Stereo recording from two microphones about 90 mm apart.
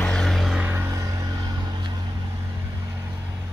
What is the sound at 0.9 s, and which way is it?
Vehicle, 40° right (ahead or behind).